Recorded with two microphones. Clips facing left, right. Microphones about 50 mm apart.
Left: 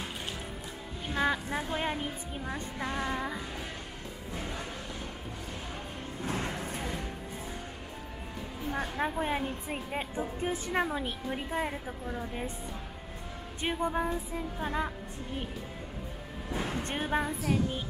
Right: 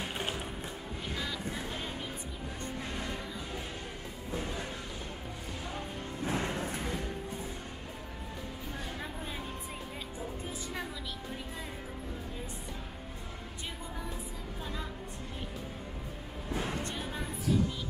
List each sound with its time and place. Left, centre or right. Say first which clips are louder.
1.1 s music: left 10 dB; left
2.5 s speech: left 5 dB; left
6.4 s a sound: right 1 dB; centre
8.7 s speech: left 11 dB; left
13.6 s speech: left 14 dB; left
16.4 s vehicle: left 1 dB; centre
16.9 s speech: left 8 dB; left